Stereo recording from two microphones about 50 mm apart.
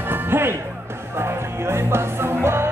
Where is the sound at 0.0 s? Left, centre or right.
Right.